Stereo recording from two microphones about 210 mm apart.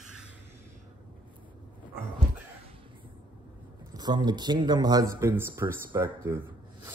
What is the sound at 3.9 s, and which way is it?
Speech, 20° right (ahead or behind).